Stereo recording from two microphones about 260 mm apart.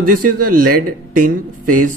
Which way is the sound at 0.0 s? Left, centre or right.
Right.